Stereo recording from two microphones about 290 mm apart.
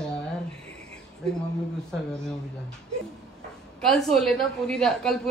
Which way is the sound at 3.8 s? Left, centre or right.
Centre.